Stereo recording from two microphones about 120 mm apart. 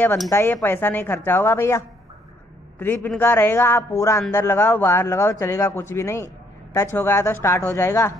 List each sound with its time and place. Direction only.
0.3 s a woman's voice: 20° left (ahead or behind)